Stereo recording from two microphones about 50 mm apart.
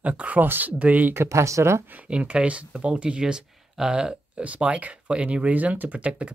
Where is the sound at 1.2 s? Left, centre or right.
Right.